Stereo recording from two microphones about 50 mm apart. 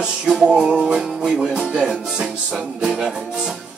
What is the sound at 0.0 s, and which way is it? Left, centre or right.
Music, centre.